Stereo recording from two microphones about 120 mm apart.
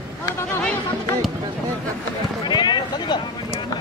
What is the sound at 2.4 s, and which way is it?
Speech, 40° left (ahead or behind).